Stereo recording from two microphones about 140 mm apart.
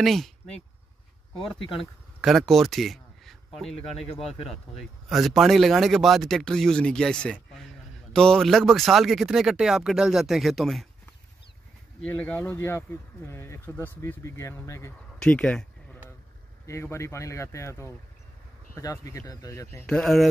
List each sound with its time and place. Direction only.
0.0 s speech: centre (ahead or behind)
2.2 s speech: centre (ahead or behind)
5.1 s speech: centre (ahead or behind)
12.0 s speech: 10° left (ahead or behind)
15.1 s a sound: 5° left (ahead or behind)
16.6 s speech: 20° left (ahead or behind)
19.9 s speech: 5° left (ahead or behind)